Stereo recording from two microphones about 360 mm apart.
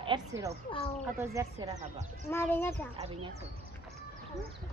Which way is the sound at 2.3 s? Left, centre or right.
Centre.